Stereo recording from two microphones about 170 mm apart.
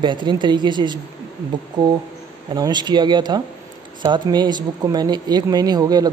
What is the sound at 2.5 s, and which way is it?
Speech, 25° right (ahead or behind).